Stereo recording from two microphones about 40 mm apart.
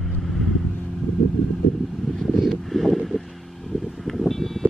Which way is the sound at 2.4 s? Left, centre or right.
Centre.